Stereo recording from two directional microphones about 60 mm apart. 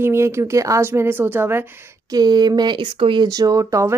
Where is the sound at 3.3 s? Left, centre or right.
Right.